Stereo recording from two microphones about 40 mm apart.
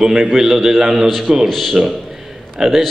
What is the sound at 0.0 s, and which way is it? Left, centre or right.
A man's voice, centre.